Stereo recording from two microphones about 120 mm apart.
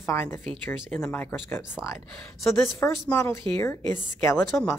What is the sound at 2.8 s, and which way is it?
A woman's voice, 20° left (ahead or behind).